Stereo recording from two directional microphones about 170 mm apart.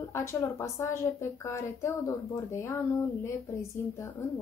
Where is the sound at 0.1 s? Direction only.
15° left (ahead or behind).